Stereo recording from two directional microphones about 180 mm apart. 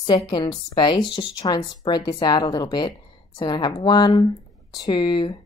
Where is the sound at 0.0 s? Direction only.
20° left (ahead or behind).